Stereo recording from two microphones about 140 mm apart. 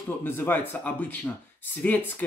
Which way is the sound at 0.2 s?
15° left (ahead or behind).